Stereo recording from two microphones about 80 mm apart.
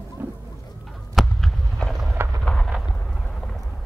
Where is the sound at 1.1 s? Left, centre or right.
Centre.